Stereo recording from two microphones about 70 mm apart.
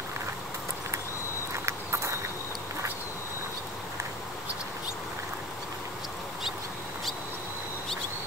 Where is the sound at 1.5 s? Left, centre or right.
Right.